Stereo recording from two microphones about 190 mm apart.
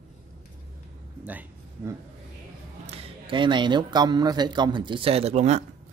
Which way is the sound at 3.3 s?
25° right (ahead or behind).